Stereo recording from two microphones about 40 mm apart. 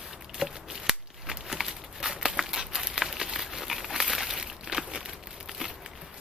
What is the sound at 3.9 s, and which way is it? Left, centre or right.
Crumpling, centre.